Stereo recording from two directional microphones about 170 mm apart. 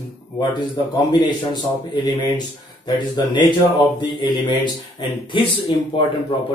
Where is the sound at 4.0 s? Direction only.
30° left (ahead or behind).